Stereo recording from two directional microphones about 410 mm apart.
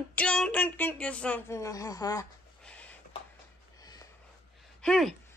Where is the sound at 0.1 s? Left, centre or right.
Centre.